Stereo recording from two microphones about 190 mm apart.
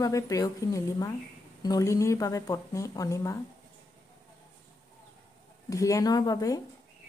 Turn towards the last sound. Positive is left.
turn(degrees=20)  # may be behind; listen again after turning